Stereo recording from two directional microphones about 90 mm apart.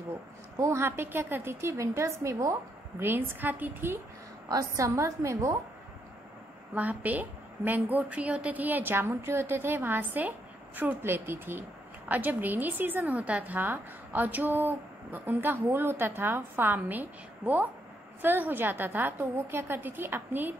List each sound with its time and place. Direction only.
0.6 s a woman's voice: 30° right (ahead or behind)
4.5 s a woman's voice: 40° right (ahead or behind)
6.7 s a woman's voice: 20° right (ahead or behind)